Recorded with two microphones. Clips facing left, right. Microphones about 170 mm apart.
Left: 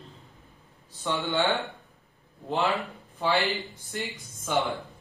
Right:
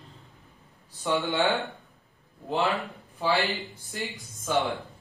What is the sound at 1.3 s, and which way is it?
Speech, 20° right (ahead or behind).